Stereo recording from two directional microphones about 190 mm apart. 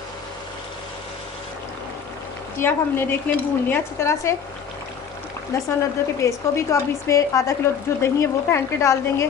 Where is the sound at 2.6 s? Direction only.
10° left (ahead or behind).